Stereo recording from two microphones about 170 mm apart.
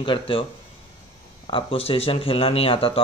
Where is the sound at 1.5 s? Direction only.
30° left (ahead or behind).